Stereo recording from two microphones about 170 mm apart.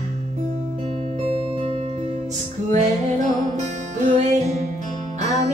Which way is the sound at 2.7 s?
45° right (ahead or behind).